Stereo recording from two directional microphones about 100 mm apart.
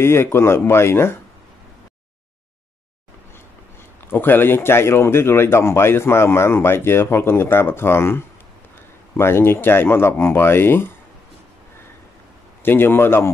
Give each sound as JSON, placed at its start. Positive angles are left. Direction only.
{"t": 0.0, "sound": "speech", "side_deg": 25}
{"t": 4.1, "sound": "speech", "side_deg": 20}
{"t": 12.6, "sound": "speech", "side_deg": 20}